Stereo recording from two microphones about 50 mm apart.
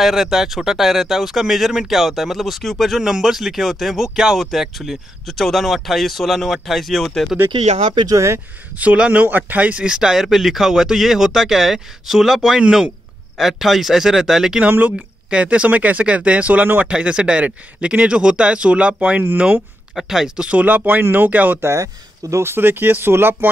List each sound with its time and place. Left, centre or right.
0.0 s speech: centre
3.0 s speech: centre
7.3 s speech: centre
8.7 s speech: right
9.8 s speech: centre
13.4 s speech: centre
14.8 s speech: right
16.9 s speech: right
20.0 s speech: centre
20.6 s speech: right
21.5 s speech: right
22.4 s speech: right